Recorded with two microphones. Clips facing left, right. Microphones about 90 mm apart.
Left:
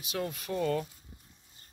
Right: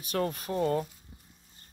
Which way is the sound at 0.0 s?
50° right (ahead or behind).